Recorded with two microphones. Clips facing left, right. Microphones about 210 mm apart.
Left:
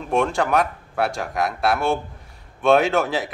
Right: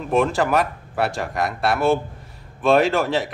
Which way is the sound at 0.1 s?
Centre (ahead or behind).